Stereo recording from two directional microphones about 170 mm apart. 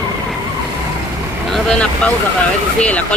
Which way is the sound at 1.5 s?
5° left (ahead or behind).